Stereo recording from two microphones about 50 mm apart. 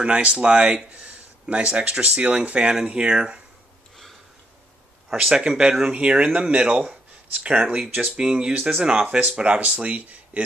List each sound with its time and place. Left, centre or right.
0.0 s speech: right
5.1 s speech: centre
5.9 s speech: right
7.8 s speech: centre
9.0 s speech: right